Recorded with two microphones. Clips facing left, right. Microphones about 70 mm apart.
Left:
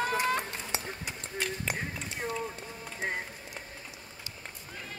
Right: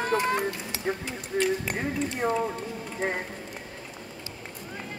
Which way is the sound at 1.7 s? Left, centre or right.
Right.